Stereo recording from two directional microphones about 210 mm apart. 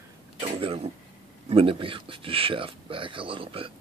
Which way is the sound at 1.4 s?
25° right (ahead or behind).